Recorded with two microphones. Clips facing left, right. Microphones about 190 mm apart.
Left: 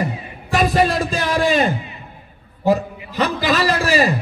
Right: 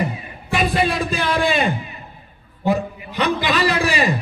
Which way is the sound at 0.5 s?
40° left (ahead or behind).